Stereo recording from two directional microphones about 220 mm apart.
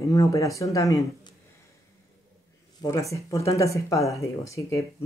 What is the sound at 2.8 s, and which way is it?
Speech, 15° left (ahead or behind).